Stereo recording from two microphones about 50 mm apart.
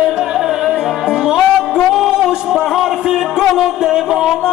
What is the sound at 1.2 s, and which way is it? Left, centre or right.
Music, centre.